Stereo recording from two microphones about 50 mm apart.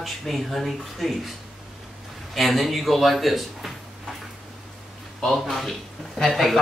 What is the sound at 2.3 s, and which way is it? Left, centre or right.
Speech, centre.